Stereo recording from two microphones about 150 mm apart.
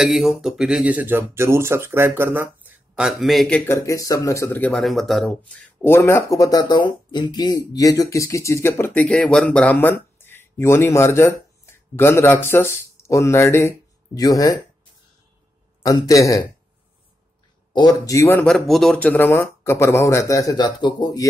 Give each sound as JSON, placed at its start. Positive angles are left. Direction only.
{"t": 0.0, "sound": "speech", "side_deg": -5}
{"t": 3.7, "sound": "speech", "side_deg": 20}
{"t": 15.8, "sound": "speech", "side_deg": 20}
{"t": 17.7, "sound": "speech", "side_deg": 25}
{"t": 18.5, "sound": "speech", "side_deg": 0}